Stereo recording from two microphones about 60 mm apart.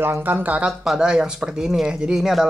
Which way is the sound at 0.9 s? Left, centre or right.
Centre.